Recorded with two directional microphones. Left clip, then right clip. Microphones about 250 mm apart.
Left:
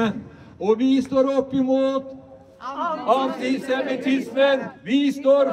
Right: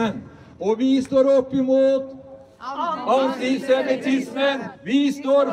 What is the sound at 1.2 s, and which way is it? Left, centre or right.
Speech, centre.